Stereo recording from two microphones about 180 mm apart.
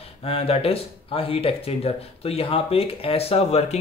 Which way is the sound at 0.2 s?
35° left (ahead or behind).